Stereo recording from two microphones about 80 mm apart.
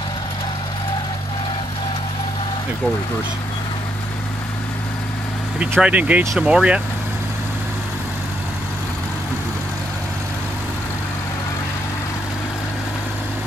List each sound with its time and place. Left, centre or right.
5.6 s speech: centre